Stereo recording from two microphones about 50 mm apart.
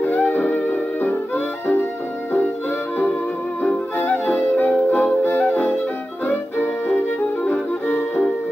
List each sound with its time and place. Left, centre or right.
0.0 s music: left
4.0 s music: left
7.4 s music: left